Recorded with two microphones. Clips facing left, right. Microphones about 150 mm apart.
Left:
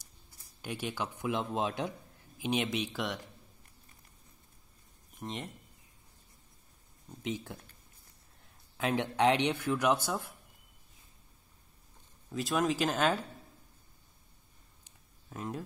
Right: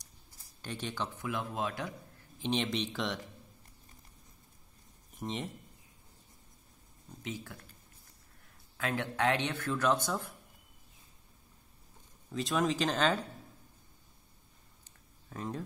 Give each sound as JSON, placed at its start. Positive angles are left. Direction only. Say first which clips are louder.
{"t": 0.6, "sound": "speech", "louder": "left 1 dB", "side_deg": 10}
{"t": 1.3, "sound": "speech", "louder": "left 4 dB", "side_deg": 20}
{"t": 2.3, "sound": "speech", "louder": "left 1 dB", "side_deg": 10}
{"t": 5.2, "sound": "speech", "louder": "right 2 dB", "side_deg": 0}
{"t": 7.2, "sound": "speech", "louder": "left 4 dB", "side_deg": 20}
{"t": 8.7, "sound": "speech", "louder": "left 3 dB", "side_deg": 20}
{"t": 12.3, "sound": "speech", "louder": "left 1 dB", "side_deg": 5}
{"t": 14.9, "sound": "a sound", "louder": "even", "side_deg": 5}